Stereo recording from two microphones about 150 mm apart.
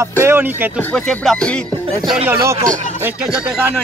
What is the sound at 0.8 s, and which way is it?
Speech, 10° left (ahead or behind).